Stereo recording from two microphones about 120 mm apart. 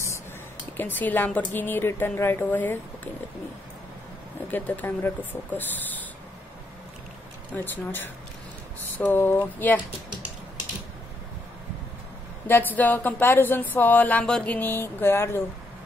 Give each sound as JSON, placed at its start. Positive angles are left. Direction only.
{"t": 0.7, "sound": "speech", "side_deg": 15}
{"t": 4.5, "sound": "speech", "side_deg": 15}
{"t": 7.5, "sound": "speech", "side_deg": 15}
{"t": 8.9, "sound": "a sound", "side_deg": 20}
{"t": 9.6, "sound": "speech", "side_deg": 15}
{"t": 12.4, "sound": "speech", "side_deg": 15}